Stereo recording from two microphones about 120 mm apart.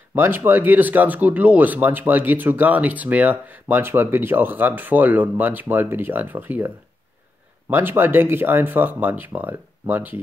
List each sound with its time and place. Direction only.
0.1 s speech: 20° right (ahead or behind)
7.7 s speech: 20° right (ahead or behind)